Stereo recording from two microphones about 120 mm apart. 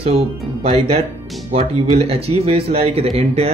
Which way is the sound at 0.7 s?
60° right (ahead or behind).